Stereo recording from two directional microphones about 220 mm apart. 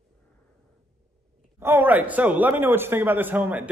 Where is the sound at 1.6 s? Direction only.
10° right (ahead or behind).